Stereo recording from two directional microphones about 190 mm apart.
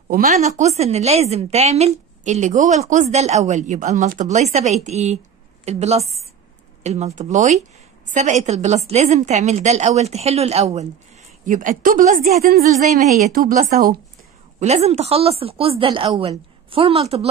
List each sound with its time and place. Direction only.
0.1 s a woman's voice: 45° right (ahead or behind)
14.6 s a woman's voice: 35° right (ahead or behind)